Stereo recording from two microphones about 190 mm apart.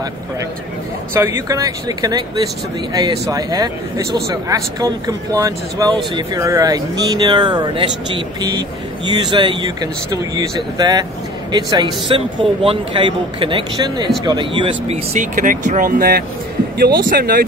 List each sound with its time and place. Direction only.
1.1 s a man's voice: 15° right (ahead or behind)
15.1 s a man's voice: 45° right (ahead or behind)